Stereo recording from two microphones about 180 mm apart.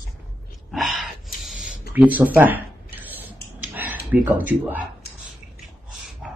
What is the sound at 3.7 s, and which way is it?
Speech, 10° right (ahead or behind).